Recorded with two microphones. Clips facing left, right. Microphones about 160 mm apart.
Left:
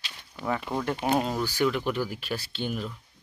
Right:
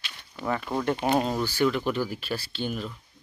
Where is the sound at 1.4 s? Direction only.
10° left (ahead or behind).